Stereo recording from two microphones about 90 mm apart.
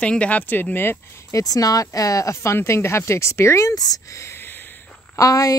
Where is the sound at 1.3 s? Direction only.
40° left (ahead or behind); by 4.6 s 25° left (ahead or behind).